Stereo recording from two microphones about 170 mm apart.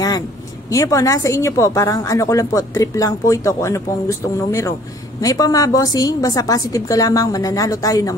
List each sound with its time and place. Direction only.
0.7 s a woman's voice: 20° left (ahead or behind)